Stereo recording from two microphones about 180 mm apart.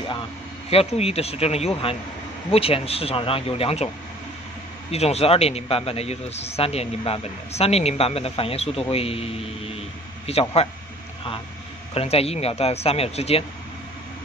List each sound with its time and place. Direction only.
0.7 s speech: 35° left (ahead or behind)
4.9 s speech: 35° left (ahead or behind)
11.9 s speech: 35° left (ahead or behind)